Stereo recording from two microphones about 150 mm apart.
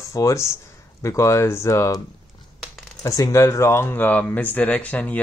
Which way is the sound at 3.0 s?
20° left (ahead or behind).